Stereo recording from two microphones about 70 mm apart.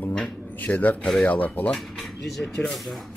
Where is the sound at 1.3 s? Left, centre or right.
Left.